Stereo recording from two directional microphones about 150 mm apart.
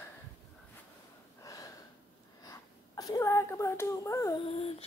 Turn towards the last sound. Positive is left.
turn(degrees=20)  # may be behind; listen again after turning